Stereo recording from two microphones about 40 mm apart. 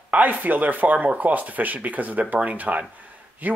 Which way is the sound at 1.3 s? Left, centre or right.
Right.